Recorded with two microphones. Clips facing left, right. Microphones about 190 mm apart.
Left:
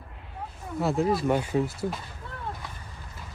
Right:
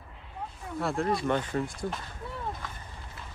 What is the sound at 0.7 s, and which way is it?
Speech, centre (ahead or behind).